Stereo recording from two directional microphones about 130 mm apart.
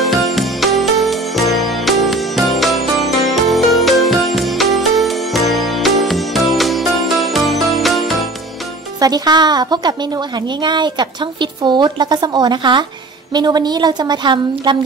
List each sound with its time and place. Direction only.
0.0 s music: centre (ahead or behind)
9.0 s a woman's voice: 30° right (ahead or behind)